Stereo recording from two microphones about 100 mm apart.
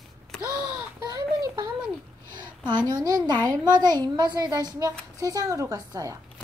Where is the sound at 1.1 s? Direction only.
40° right (ahead or behind).